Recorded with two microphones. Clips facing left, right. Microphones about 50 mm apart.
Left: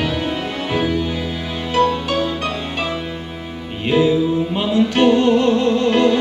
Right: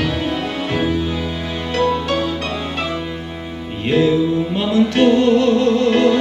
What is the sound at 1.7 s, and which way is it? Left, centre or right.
Music, centre.